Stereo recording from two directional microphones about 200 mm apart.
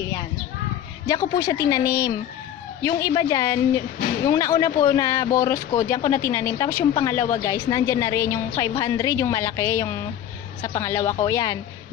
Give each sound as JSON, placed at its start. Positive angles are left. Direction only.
{"t": 1.0, "sound": "a woman's voice", "side_deg": 20}